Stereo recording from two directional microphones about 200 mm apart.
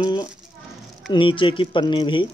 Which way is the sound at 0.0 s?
20° left (ahead or behind).